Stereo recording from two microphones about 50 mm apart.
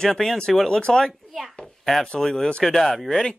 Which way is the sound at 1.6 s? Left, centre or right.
Left.